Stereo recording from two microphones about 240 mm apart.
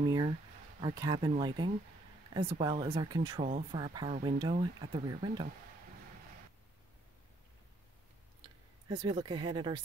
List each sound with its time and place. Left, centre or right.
0.0 s speech: centre
8.8 s speech: centre